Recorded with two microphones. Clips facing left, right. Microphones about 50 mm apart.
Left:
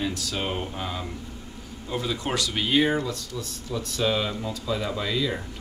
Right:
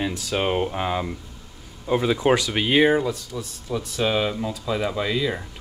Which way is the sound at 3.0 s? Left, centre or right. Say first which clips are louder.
Right 4 dB; centre.